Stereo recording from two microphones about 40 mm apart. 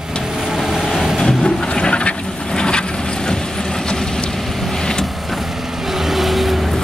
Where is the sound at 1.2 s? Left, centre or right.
Centre.